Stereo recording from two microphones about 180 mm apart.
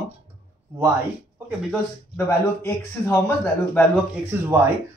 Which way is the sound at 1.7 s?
15° left (ahead or behind).